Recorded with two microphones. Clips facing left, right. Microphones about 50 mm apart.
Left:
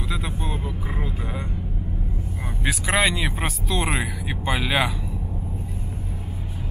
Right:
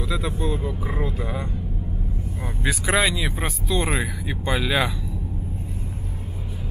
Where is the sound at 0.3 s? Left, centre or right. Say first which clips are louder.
Right 4 dB; centre.